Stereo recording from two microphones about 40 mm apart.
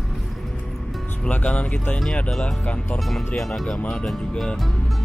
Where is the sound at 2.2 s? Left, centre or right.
Centre.